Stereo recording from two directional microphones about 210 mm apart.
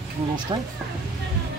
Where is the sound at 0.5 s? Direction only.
25° right (ahead or behind).